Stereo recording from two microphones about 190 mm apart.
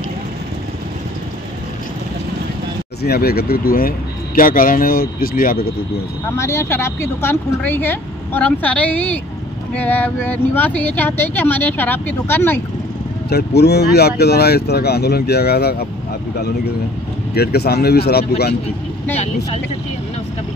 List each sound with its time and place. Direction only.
3.0 s speech: 55° left (ahead or behind)
6.3 s speech: 15° left (ahead or behind)
13.3 s speech: 55° left (ahead or behind)
17.3 s speech: 55° left (ahead or behind)